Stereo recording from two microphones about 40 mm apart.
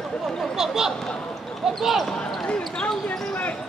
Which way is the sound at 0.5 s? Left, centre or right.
Centre.